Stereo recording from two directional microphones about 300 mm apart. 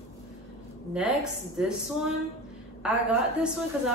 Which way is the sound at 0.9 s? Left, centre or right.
Centre.